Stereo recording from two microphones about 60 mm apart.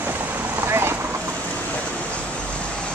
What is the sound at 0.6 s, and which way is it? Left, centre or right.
Boat, right.